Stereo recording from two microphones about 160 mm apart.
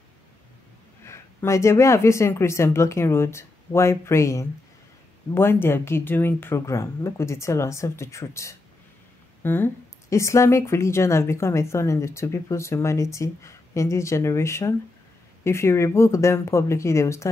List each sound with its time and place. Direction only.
1.0 s a woman's voice: 15° left (ahead or behind)